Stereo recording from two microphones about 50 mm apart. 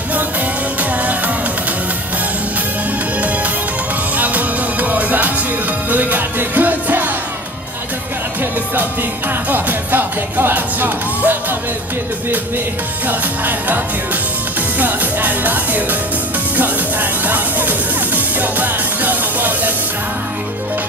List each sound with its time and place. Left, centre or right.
4.2 s music: right
9.5 s music: right
14.8 s music: right
17.3 s music: right